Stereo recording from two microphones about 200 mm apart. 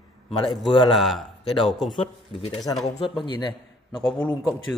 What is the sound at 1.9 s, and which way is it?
Speech, 30° left (ahead or behind).